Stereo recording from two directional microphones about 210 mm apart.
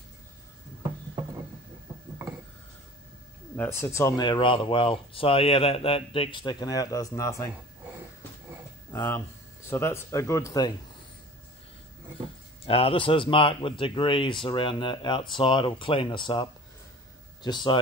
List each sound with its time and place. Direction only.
3.5 s speech: 10° left (ahead or behind)
8.9 s speech: 10° left (ahead or behind)
12.6 s a man's voice: 25° left (ahead or behind)